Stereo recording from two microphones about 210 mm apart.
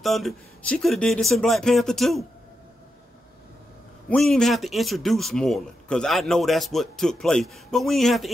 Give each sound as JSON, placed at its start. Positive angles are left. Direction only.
{"t": 0.0, "sound": "speech", "side_deg": 0}
{"t": 4.1, "sound": "speech", "side_deg": 0}